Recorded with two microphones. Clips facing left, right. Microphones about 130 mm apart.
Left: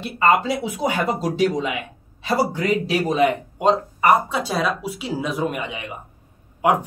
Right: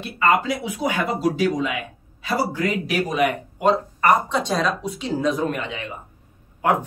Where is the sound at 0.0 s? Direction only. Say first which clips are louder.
Left 2 dB; 25° left (ahead or behind).